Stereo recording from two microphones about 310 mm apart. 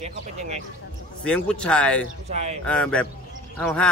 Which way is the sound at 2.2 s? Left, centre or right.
Right.